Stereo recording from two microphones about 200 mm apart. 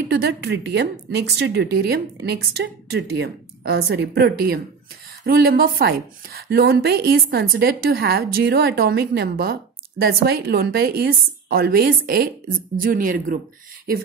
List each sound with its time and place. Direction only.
0.1 s a woman's voice: 55° right (ahead or behind)